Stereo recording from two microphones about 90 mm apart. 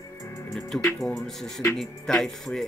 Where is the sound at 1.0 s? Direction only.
Centre (ahead or behind).